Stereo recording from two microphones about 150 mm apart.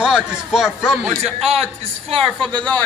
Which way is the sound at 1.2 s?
45° right (ahead or behind).